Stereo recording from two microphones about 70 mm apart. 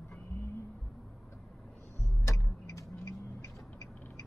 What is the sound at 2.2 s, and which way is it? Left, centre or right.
Tick-tock, left.